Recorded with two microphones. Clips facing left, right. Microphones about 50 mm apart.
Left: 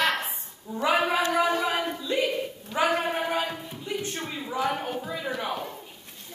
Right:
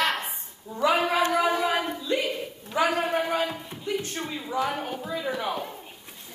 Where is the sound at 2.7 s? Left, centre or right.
Centre.